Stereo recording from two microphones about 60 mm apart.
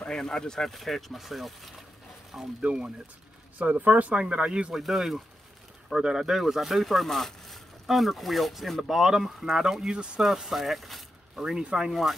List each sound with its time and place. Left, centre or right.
0.0 s speech: centre
2.6 s speech: centre
3.5 s speech: right
4.7 s speech: centre